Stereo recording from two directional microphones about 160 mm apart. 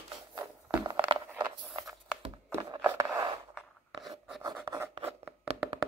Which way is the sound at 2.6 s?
30° right (ahead or behind).